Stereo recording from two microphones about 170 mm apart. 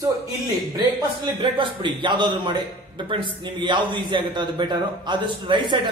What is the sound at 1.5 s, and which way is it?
A man's voice, 30° right (ahead or behind).